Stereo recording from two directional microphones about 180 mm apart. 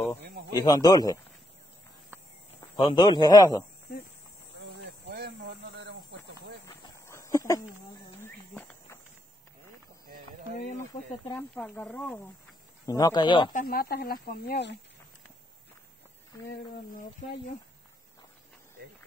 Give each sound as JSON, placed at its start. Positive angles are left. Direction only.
{"t": 0.6, "sound": "a man's voice", "side_deg": 20}
{"t": 2.8, "sound": "a man's voice", "side_deg": 25}
{"t": 4.6, "sound": "a sound", "side_deg": -75}
{"t": 6.6, "sound": "a sound", "side_deg": 20}
{"t": 8.2, "sound": "cricket", "side_deg": 15}
{"t": 10.8, "sound": "speech", "side_deg": 15}
{"t": 12.8, "sound": "a man's voice", "side_deg": 20}
{"t": 13.5, "sound": "speech", "side_deg": 50}